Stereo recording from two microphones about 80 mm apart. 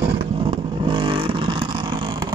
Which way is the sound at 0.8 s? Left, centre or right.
Right.